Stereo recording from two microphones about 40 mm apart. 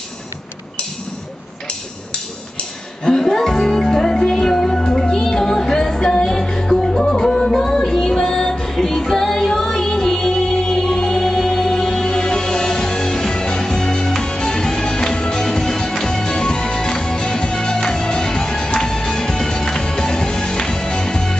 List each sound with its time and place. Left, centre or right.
3.0 s music: centre